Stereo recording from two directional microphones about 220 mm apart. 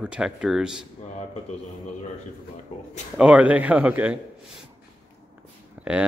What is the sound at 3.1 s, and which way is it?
Speech, 5° right (ahead or behind).